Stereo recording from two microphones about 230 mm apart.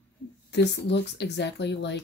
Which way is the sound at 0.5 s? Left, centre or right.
Left.